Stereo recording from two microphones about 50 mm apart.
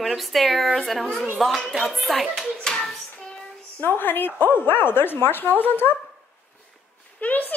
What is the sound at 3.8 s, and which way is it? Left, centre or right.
Speech, left.